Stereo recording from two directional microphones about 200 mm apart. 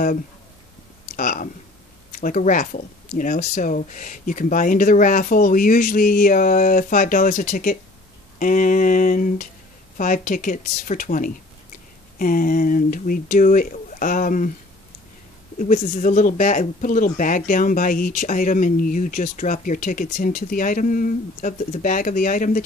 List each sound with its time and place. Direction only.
1.1 s speech: 40° left (ahead or behind)
15.6 s speech: 40° left (ahead or behind)